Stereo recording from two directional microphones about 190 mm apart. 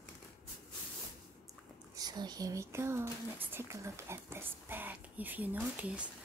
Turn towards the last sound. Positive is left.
turn(degrees=-10)  # may be behind; listen again after turning